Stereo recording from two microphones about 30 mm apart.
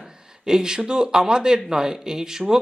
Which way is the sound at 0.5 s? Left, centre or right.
Right.